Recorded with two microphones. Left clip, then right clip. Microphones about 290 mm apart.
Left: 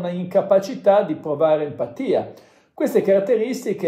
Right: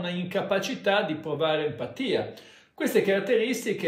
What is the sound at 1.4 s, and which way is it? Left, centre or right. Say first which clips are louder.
Speech: left 8 dB; centre.